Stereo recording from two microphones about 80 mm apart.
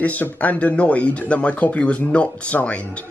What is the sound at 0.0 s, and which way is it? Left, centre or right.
Speech, centre.